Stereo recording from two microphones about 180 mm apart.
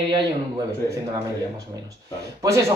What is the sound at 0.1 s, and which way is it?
Speech, 20° right (ahead or behind).